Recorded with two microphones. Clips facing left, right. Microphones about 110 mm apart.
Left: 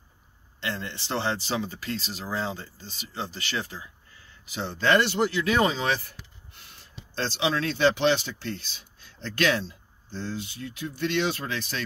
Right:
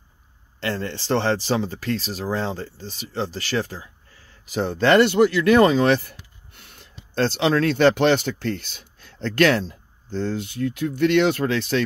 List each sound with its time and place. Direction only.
0.7 s speech: 40° right (ahead or behind)
4.8 s speech: 70° right (ahead or behind)
7.2 s speech: 55° right (ahead or behind); by 11.8 s 70° right (ahead or behind)